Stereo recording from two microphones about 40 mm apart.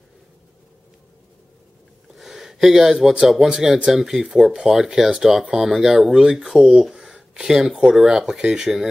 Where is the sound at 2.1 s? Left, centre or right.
Centre.